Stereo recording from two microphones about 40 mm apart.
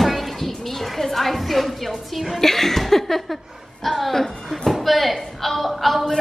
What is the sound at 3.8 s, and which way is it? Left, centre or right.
A woman's voice, centre.